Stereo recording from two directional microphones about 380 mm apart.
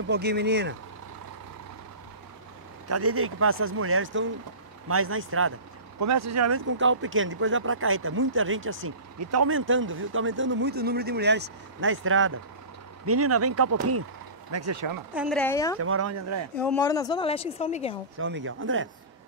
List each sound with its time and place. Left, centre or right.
0.1 s speech: right
2.9 s speech: right
5.9 s speech: right
15.1 s speech: centre
15.8 s speech: right
16.5 s a woman's voice: centre
18.2 s speech: right